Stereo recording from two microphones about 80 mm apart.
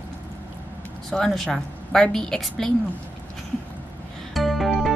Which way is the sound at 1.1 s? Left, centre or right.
Centre.